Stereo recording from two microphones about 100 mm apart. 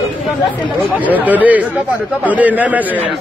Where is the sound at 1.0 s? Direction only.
15° right (ahead or behind).